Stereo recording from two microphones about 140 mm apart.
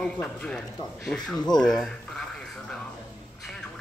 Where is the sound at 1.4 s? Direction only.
30° left (ahead or behind).